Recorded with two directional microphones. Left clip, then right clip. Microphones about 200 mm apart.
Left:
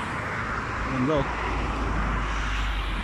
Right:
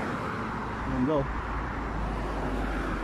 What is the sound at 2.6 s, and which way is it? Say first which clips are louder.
Vehicle: left 1 dB; 50° right (ahead or behind).